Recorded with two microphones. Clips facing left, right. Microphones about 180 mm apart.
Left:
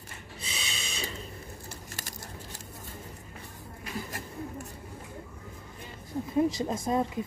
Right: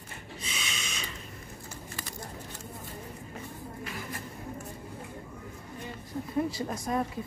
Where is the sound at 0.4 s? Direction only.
30° left (ahead or behind).